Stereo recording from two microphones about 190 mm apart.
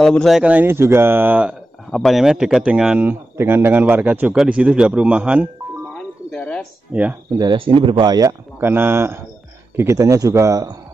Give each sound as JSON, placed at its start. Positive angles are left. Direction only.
{"t": 0.0, "sound": "speech", "side_deg": 0}
{"t": 5.9, "sound": "music", "side_deg": 5}
{"t": 6.9, "sound": "speech", "side_deg": -5}
{"t": 7.3, "sound": "speech", "side_deg": -25}